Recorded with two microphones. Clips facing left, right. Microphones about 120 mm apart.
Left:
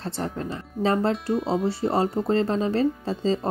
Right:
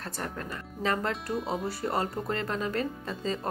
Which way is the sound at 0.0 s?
25° left (ahead or behind).